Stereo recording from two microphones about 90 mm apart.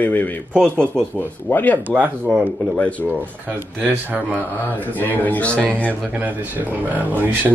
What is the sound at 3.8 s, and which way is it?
Speech, 15° right (ahead or behind).